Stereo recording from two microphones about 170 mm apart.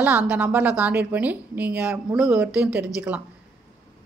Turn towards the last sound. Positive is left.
turn(degrees=-10)  # may be behind; listen again after turning